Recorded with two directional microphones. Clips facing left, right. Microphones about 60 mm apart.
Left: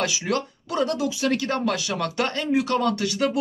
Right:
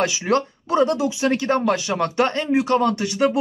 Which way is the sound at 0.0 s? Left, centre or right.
Right.